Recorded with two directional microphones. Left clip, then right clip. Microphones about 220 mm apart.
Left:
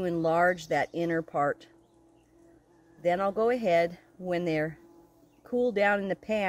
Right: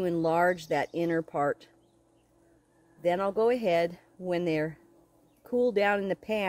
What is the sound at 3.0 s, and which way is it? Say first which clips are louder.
Speech: even; 20° right (ahead or behind).